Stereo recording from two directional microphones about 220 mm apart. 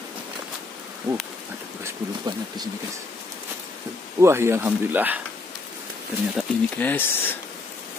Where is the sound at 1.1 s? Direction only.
15° right (ahead or behind).